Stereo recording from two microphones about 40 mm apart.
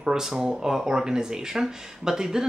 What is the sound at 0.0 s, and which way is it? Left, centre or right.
Speech, centre.